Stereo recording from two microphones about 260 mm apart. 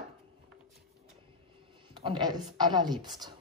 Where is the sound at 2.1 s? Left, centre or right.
Centre.